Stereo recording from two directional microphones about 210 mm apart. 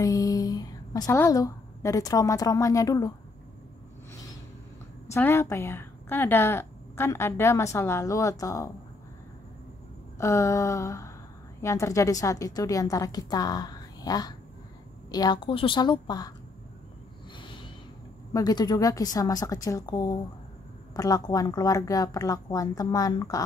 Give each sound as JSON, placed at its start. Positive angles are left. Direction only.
{"t": 0.0, "sound": "a woman's voice", "side_deg": 15}
{"t": 5.1, "sound": "speech", "side_deg": 10}
{"t": 10.1, "sound": "a sound", "side_deg": 15}
{"t": 11.6, "sound": "a woman's voice", "side_deg": 15}
{"t": 17.4, "sound": "a sound", "side_deg": 25}
{"t": 18.3, "sound": "speech", "side_deg": 20}